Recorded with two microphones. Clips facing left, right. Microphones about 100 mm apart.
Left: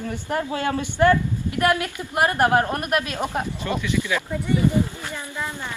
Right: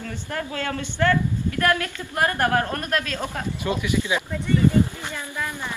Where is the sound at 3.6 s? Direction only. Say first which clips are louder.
Right 4 dB; 15° right (ahead or behind).